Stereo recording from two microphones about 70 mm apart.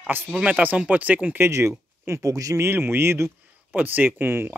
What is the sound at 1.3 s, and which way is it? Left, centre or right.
Speech, right.